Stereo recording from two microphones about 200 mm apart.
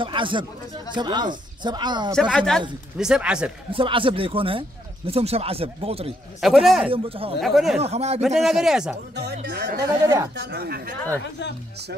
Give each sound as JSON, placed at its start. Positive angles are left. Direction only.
{"t": 0.0, "sound": "speech", "side_deg": -25}
{"t": 2.1, "sound": "speech", "side_deg": 5}
{"t": 3.7, "sound": "speech", "side_deg": -25}
{"t": 6.4, "sound": "speech", "side_deg": 0}
{"t": 6.9, "sound": "speech", "side_deg": -30}
{"t": 7.3, "sound": "speech", "side_deg": 0}
{"t": 7.8, "sound": "a man's voice", "side_deg": -30}
{"t": 8.4, "sound": "speech", "side_deg": 0}
{"t": 9.1, "sound": "speech", "side_deg": -55}
{"t": 9.8, "sound": "speech", "side_deg": -15}
{"t": 10.3, "sound": "speech", "side_deg": -55}